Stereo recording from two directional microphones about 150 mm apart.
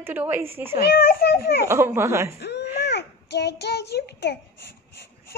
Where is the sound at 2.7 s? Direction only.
90° left.